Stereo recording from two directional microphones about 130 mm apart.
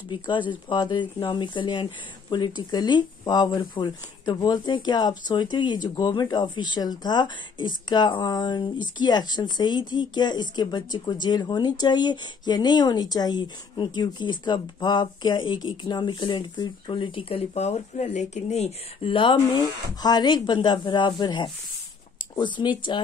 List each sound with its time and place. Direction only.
0.1 s speech: 40° left (ahead or behind); by 19.1 s 60° left (ahead or behind)
19.1 s speech: 40° left (ahead or behind)